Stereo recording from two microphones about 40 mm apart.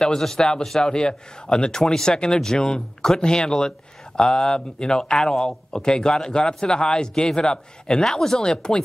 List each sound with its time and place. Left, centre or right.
0.0 s speech: centre